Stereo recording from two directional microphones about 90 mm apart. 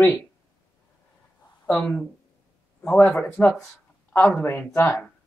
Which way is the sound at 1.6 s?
10° left (ahead or behind).